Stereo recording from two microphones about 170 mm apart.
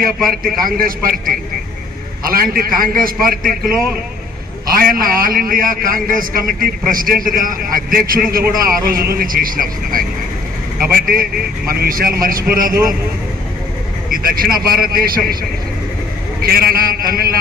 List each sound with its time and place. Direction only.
0.2 s a man's voice: 55° right (ahead or behind)
11.7 s a man's voice: 60° right (ahead or behind)
14.1 s a man's voice: 60° right (ahead or behind)
16.4 s a man's voice: 60° right (ahead or behind)